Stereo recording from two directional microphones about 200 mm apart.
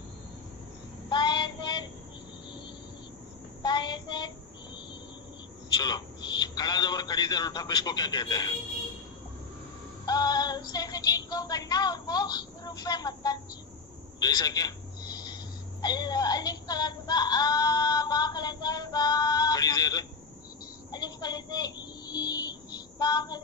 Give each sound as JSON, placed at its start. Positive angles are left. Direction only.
{"t": 1.1, "sound": "child singing", "side_deg": 20}
{"t": 3.6, "sound": "child singing", "side_deg": 20}
{"t": 5.8, "sound": "a man's voice", "side_deg": 20}
{"t": 10.0, "sound": "speech", "side_deg": 20}
{"t": 14.2, "sound": "telephone", "side_deg": 20}
{"t": 15.8, "sound": "a sound", "side_deg": 20}